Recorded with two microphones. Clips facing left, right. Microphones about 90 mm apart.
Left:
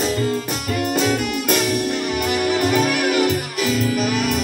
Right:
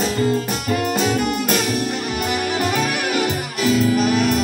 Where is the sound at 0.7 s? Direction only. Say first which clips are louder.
Left 1 dB; 40° right (ahead or behind).